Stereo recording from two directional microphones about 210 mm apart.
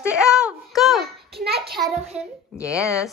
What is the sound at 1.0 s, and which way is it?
Speech, 50° right (ahead or behind).